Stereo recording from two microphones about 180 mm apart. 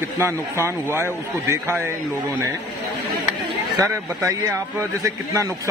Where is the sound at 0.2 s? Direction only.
15° right (ahead or behind).